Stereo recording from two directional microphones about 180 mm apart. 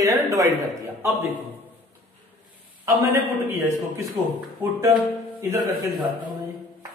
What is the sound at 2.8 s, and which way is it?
A man's voice, 15° right (ahead or behind).